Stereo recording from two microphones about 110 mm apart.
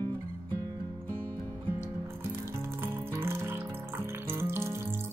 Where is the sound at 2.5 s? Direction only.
25° right (ahead or behind).